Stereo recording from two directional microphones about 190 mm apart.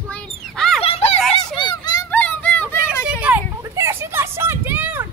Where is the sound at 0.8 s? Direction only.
30° left (ahead or behind).